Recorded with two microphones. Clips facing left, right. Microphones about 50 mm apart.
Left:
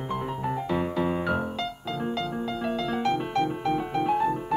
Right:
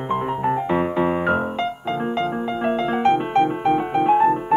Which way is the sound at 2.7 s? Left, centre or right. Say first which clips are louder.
Right 9 dB; right.